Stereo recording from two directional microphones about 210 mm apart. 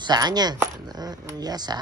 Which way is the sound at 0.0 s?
20° right (ahead or behind).